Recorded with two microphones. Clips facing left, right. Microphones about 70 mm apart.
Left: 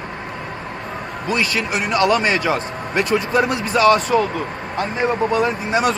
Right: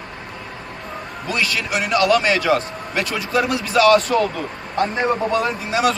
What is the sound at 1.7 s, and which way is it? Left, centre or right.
Speech, left.